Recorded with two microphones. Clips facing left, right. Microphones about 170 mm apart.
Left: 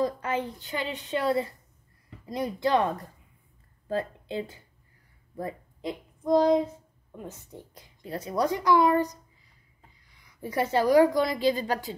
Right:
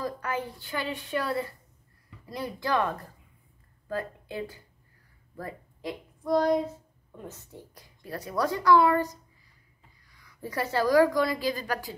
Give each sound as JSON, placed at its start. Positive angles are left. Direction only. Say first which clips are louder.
{"t": 0.0, "sound": "a woman's voice", "louder": "left 4 dB", "side_deg": 20}